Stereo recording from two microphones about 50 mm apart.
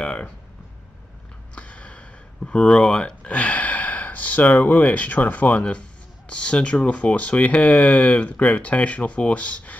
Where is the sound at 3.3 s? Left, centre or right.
Left.